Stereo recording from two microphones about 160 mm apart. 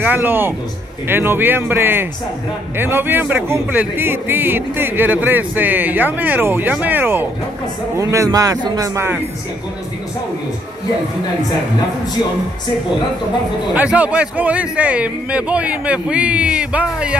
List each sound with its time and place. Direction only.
0.0 s speech: 10° right (ahead or behind)
13.7 s speech: 10° right (ahead or behind)